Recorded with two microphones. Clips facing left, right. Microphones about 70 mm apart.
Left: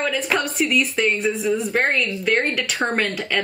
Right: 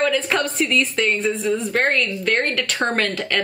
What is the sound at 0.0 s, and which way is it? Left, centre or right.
Speech, centre.